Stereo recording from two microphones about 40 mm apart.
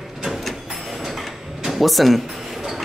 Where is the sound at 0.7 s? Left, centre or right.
Centre.